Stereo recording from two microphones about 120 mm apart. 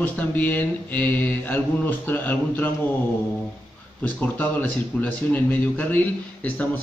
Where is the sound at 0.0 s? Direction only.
15° left (ahead or behind).